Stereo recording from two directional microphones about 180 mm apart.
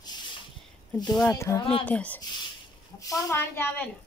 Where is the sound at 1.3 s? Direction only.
15° left (ahead or behind).